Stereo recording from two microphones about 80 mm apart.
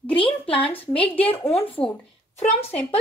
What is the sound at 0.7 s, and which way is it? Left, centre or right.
A woman's voice, left.